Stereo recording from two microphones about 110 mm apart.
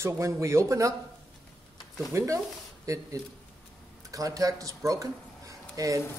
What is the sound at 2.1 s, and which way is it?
Speech, 25° right (ahead or behind).